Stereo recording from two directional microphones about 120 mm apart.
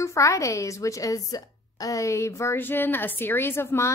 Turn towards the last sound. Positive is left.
turn(degrees=20)  # may be behind; listen again after turning